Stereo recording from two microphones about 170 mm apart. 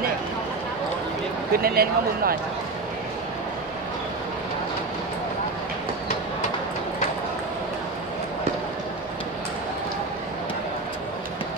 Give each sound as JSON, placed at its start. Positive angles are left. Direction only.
{"t": 1.5, "sound": "speech", "side_deg": -60}